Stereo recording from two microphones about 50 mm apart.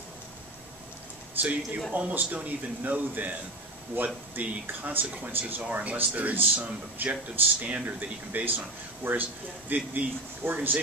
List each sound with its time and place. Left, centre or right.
1.4 s speech: right